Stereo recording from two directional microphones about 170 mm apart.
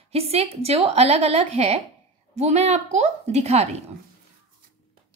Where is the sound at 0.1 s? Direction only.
35° right (ahead or behind).